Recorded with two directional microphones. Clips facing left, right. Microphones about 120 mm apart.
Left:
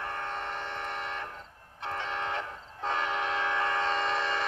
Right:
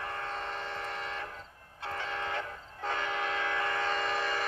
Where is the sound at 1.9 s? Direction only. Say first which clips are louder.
Left 2 dB; 25° left (ahead or behind).